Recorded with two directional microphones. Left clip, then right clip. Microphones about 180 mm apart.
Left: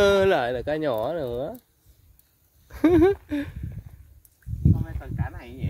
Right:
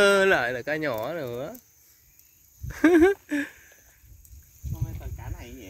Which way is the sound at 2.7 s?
Centre (ahead or behind).